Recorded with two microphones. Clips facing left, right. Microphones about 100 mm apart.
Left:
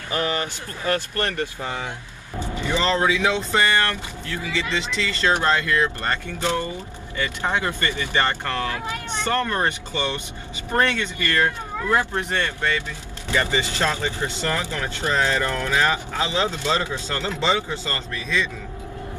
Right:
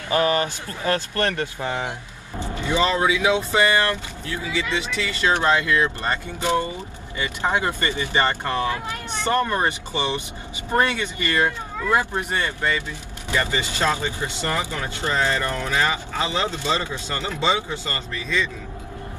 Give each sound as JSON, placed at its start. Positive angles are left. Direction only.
{"t": 0.1, "sound": "speech", "side_deg": -35}
{"t": 0.9, "sound": "speech", "side_deg": -20}
{"t": 2.6, "sound": "speech", "side_deg": -15}
{"t": 17.4, "sound": "speech", "side_deg": -10}